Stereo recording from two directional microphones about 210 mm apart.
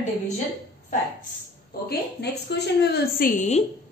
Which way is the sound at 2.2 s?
50° left (ahead or behind).